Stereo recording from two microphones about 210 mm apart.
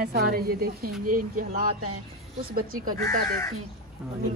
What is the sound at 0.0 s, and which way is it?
Speech, 50° right (ahead or behind).